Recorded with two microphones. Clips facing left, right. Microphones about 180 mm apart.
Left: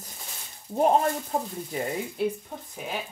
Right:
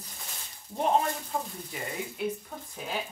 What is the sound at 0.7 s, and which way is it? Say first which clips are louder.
Speech: left 5 dB; 40° left (ahead or behind).